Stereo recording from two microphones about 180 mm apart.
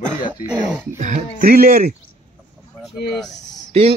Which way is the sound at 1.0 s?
40° right (ahead or behind).